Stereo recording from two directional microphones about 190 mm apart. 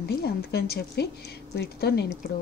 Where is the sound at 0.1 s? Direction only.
55° left (ahead or behind).